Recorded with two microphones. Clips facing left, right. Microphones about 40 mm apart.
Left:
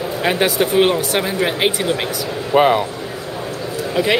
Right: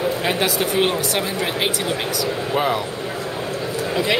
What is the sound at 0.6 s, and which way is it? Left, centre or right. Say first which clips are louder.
Speech: left 5 dB; centre.